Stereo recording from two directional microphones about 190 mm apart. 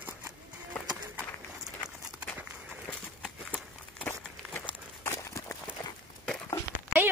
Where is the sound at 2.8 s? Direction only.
5° left (ahead or behind).